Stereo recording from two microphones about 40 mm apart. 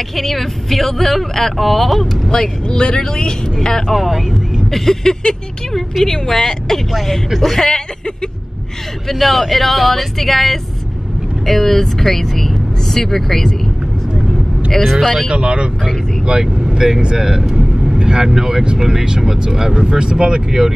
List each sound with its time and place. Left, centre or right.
0.1 s speech: centre
2.3 s a woman's voice: left
4.0 s a woman's voice: centre
9.0 s speech: centre
14.7 s speech: centre
15.0 s speech: centre
15.2 s speech: right